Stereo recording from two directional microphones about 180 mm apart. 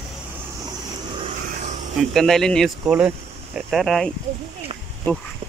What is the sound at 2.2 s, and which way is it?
Speech, centre (ahead or behind).